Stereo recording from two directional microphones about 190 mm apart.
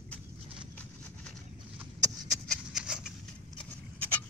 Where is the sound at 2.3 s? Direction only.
Centre (ahead or behind).